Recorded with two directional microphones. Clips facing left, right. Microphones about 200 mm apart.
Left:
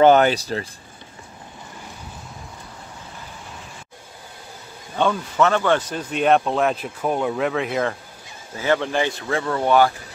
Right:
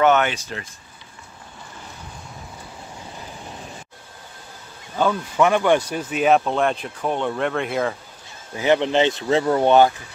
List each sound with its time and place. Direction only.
0.0 s speech: 35° left (ahead or behind)
5.0 s speech: 5° right (ahead or behind)
8.5 s speech: 20° right (ahead or behind)